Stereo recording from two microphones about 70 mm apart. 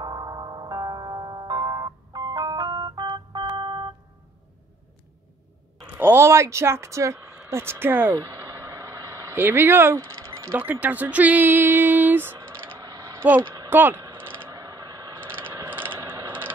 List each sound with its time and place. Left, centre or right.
0.0 s music: right
5.9 s speech: right
8.2 s vehicle: right
9.3 s speech: right
9.9 s speech: right
10.5 s speech: right
12.4 s clicking: right
12.8 s mechanisms: right
13.2 s speech: right
14.1 s typing: right
14.5 s a sound: right
15.1 s a sound: right